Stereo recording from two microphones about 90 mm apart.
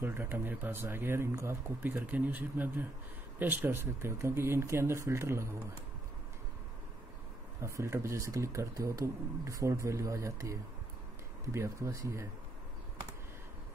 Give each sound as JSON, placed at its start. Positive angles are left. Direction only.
{"t": 0.0, "sound": "speech", "side_deg": -25}
{"t": 7.6, "sound": "speech", "side_deg": -35}